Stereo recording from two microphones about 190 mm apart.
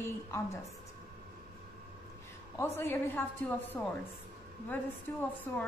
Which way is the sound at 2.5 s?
15° left (ahead or behind).